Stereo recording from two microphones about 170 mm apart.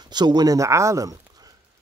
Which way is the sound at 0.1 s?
25° right (ahead or behind).